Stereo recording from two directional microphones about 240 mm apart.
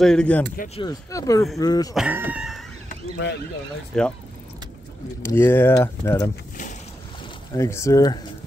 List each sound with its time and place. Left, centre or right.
0.0 s speech: centre
0.7 s speech: centre
2.0 s speech: centre
2.9 s speech: left
3.9 s speech: centre
5.2 s speech: centre
7.5 s speech: centre